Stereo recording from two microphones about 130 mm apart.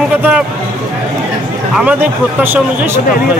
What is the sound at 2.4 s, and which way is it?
Speech, 15° right (ahead or behind).